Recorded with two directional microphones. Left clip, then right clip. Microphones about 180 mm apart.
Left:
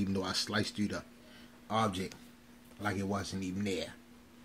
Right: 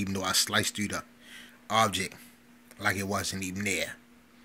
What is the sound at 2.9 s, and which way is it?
Speech, 30° right (ahead or behind).